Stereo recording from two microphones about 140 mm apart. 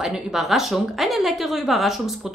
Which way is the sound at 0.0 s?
5° right (ahead or behind).